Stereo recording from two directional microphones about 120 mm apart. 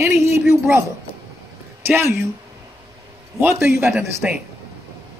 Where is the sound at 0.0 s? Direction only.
20° right (ahead or behind).